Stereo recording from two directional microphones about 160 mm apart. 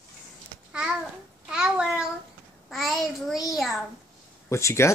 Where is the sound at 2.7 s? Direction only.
Centre (ahead or behind).